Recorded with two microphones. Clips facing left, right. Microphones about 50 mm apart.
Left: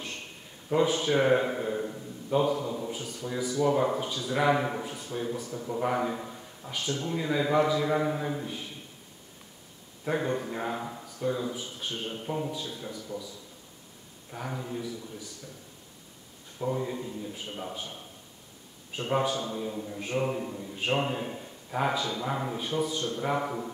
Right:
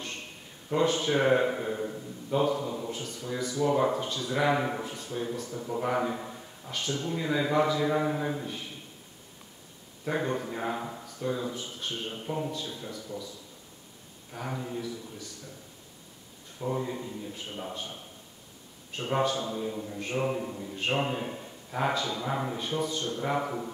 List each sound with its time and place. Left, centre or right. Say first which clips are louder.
0.7 s speech: left 1 dB; centre
6.6 s speech: even; centre
10.1 s speech: left 1 dB; centre
14.3 s speech: even; centre
16.5 s a man's voice: left 1 dB; centre
19.4 s speech: right 1 dB; centre